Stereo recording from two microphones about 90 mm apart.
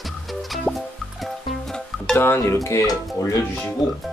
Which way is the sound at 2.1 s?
25° left (ahead or behind).